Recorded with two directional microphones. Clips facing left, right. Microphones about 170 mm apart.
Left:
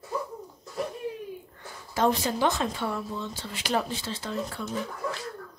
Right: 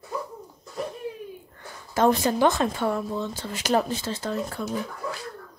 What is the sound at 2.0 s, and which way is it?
Speech, 50° right (ahead or behind).